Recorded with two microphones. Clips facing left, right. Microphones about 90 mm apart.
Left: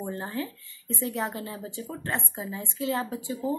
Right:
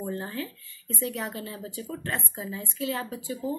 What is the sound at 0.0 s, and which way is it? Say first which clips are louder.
Speech: even; 30° left (ahead or behind).